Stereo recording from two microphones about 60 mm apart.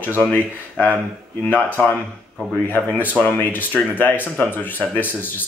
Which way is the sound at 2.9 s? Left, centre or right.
Right.